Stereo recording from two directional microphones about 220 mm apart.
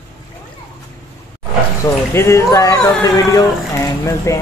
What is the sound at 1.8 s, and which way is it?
Speech, 15° left (ahead or behind).